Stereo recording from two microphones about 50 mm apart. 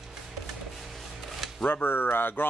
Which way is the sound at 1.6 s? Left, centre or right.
Left.